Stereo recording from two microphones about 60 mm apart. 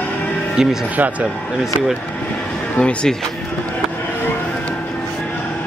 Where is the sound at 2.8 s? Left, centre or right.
Centre.